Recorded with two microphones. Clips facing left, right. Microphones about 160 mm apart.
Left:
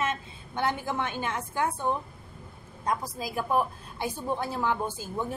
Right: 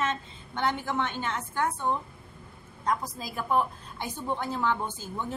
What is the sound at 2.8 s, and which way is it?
A woman's voice, 10° left (ahead or behind).